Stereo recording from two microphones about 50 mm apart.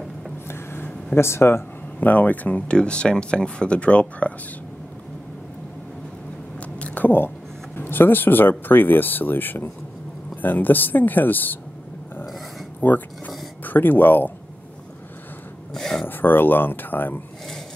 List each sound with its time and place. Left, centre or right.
0.5 s a sound: left
1.1 s speech: left
2.0 s speech: left
2.7 s speech: left
6.8 s a sound: left
7.7 s speech: left
12.8 s speech: left
15.7 s a sound: centre
16.1 s speech: left